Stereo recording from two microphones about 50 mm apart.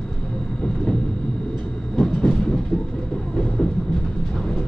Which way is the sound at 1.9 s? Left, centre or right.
Centre.